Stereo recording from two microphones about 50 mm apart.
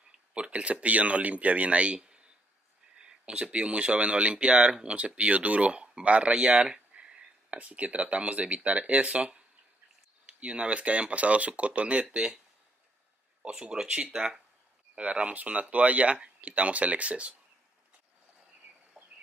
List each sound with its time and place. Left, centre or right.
0.3 s speech: right
2.0 s a sound: centre
3.0 s speech: centre
10.4 s speech: right
13.4 s speech: centre
15.0 s speech: right
19.0 s chicken: centre